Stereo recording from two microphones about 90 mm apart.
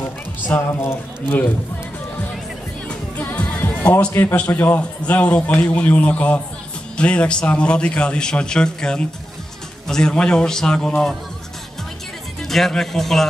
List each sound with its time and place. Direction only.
0.7 s a man's voice: 30° left (ahead or behind)
2.9 s music: 15° left (ahead or behind)
4.1 s a man's voice: 30° left (ahead or behind)
4.6 s a man's voice: 20° left (ahead or behind)
12.4 s speech: 5° left (ahead or behind)